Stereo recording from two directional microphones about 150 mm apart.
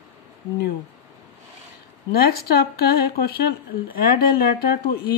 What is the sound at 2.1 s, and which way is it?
Speech, 90° left.